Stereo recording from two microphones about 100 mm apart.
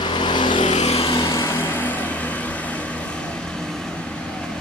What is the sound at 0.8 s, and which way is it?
Vehicle, 85° left.